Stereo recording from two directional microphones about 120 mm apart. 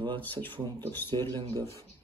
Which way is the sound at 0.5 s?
35° right (ahead or behind).